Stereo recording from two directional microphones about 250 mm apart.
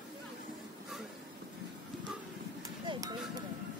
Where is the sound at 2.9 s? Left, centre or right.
Centre.